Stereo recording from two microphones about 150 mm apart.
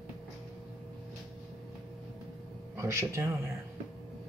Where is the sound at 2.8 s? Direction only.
20° right (ahead or behind).